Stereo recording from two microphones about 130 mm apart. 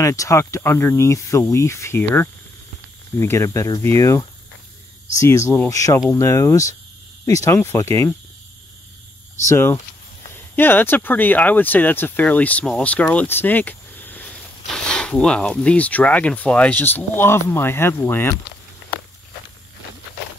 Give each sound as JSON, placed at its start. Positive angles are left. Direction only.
{"t": 0.0, "sound": "speech", "side_deg": 25}
{"t": 9.5, "sound": "speech", "side_deg": 20}